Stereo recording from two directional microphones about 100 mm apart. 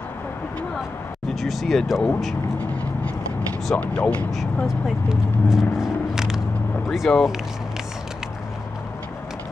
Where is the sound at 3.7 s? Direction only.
15° left (ahead or behind).